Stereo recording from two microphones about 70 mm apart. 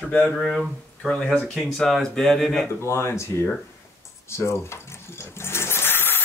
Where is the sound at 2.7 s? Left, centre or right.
Left.